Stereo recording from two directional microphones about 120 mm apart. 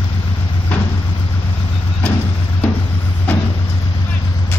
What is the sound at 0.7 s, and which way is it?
Vehicle, 10° left (ahead or behind).